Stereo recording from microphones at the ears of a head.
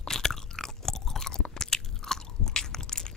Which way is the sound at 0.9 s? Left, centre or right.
Left.